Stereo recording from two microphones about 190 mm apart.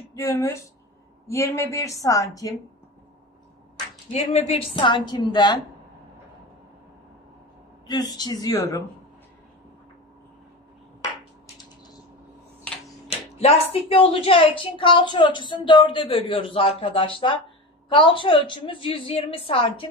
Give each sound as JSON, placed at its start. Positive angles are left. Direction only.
{"t": 0.1, "sound": "a man's voice", "side_deg": 15}
{"t": 4.1, "sound": "a woman's voice", "side_deg": 35}
{"t": 7.9, "sound": "a woman's voice", "side_deg": 20}
{"t": 13.4, "sound": "a woman's voice", "side_deg": 30}